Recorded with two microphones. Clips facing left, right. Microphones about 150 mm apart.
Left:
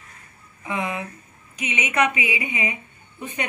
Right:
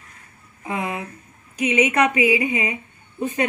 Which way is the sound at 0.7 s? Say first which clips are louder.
Right 1 dB; 50° right (ahead or behind).